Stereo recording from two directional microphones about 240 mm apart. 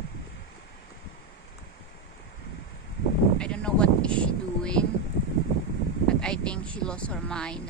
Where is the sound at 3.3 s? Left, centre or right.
Centre.